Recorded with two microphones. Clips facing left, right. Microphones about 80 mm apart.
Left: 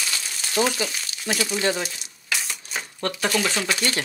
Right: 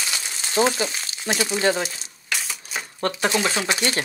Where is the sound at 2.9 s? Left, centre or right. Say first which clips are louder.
Right 2 dB; right.